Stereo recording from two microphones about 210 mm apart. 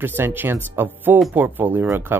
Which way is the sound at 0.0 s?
10° right (ahead or behind).